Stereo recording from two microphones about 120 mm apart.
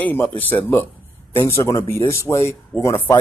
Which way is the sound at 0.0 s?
15° left (ahead or behind).